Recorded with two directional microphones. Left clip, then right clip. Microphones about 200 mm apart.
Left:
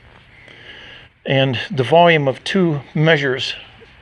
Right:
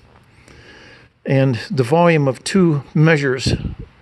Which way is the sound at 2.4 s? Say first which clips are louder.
Right 1 dB; 45° right (ahead or behind).